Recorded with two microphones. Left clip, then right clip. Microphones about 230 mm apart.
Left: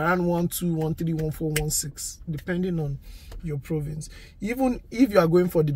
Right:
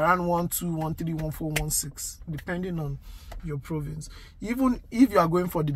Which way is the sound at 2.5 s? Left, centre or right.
Right.